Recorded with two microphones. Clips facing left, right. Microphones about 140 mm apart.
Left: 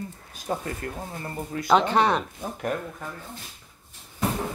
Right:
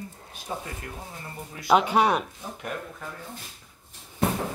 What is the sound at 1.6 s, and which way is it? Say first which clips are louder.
Speech: even; 10° right (ahead or behind).